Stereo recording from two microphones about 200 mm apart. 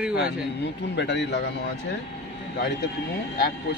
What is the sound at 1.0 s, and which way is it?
Speech, 60° left (ahead or behind).